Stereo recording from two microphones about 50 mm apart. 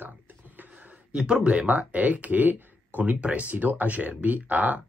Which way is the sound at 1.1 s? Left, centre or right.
Centre.